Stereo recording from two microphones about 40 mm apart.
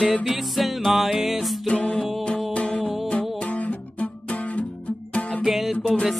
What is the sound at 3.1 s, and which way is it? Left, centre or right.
Guitar, left.